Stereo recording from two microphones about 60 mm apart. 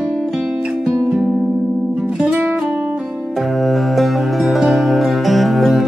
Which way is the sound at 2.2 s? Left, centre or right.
Centre.